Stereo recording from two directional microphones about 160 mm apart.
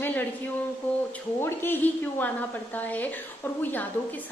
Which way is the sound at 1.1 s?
15° left (ahead or behind).